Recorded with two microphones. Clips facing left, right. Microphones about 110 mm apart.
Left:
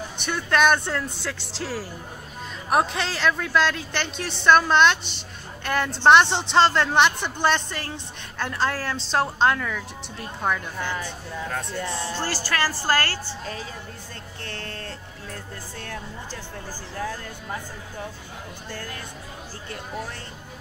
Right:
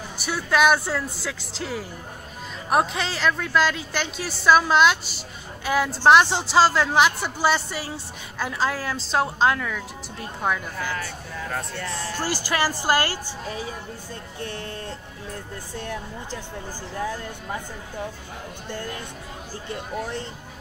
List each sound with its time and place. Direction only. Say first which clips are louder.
0.2 s a woman's voice: right 1 dB; 5° right (ahead or behind)
11.0 s speech: left 1 dB; 20° left (ahead or behind)
12.2 s speech: right 3 dB; 15° right (ahead or behind)
19.7 s speech: right 4 dB; 20° right (ahead or behind)